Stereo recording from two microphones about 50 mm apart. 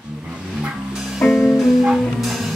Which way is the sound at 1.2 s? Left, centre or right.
Centre.